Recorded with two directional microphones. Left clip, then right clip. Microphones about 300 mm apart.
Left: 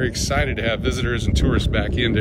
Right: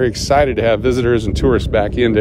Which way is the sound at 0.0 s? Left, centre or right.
Right.